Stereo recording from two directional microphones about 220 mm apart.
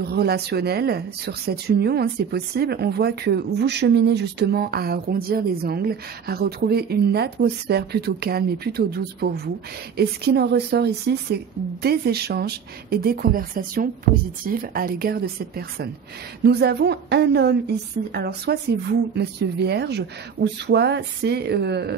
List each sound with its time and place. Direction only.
0.0 s speech: 45° right (ahead or behind)